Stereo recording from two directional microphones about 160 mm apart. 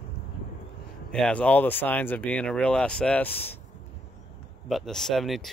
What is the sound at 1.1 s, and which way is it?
Speech, 5° left (ahead or behind).